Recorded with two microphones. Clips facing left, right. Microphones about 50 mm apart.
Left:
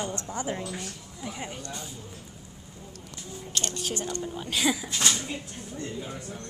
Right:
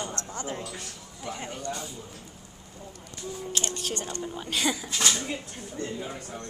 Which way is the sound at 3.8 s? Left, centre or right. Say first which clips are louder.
Left 1 dB; centre.